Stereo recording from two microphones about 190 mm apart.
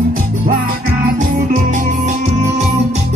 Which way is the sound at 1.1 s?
40° right (ahead or behind).